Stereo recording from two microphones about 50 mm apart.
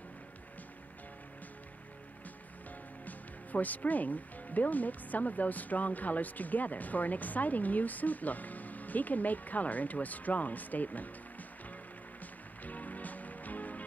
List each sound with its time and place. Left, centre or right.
3.1 s speech: left
12.6 s music: left